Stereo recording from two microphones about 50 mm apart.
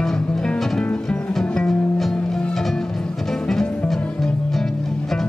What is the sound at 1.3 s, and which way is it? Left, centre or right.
Music, centre.